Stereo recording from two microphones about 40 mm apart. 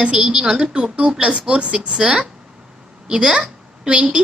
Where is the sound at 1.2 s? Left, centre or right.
Right.